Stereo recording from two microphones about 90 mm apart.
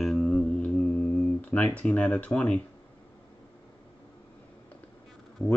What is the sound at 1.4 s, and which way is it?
Speech, 15° left (ahead or behind).